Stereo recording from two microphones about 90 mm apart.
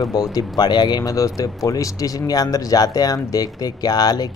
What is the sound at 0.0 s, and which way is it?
Speech, 45° left (ahead or behind).